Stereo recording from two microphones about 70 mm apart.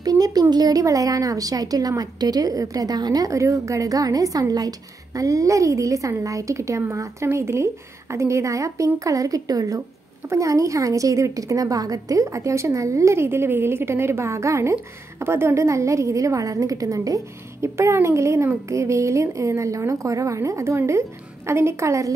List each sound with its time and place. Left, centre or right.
0.0 s a woman's voice: right